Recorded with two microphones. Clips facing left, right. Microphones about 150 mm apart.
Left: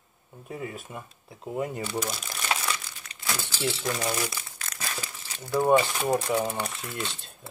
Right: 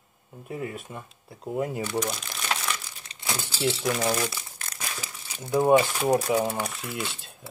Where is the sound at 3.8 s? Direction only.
5° right (ahead or behind).